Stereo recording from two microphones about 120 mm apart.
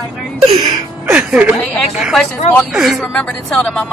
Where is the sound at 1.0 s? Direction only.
10° right (ahead or behind).